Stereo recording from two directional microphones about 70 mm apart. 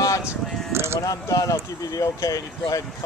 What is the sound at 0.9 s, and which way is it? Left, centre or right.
Speech, left.